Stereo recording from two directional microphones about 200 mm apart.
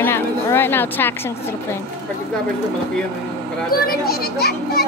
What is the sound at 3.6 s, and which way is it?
A child's voice, 50° left (ahead or behind).